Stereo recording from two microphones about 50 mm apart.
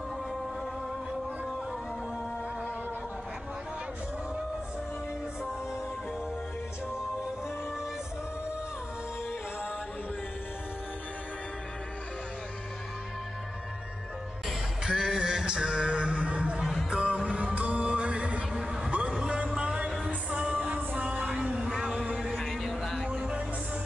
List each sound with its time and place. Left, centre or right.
14.9 s music: centre
18.5 s heart sounds: centre
18.9 s a sound: right
20.2 s music: centre
20.5 s music: right
21.5 s music: centre
22.4 s music: centre
23.0 s music: centre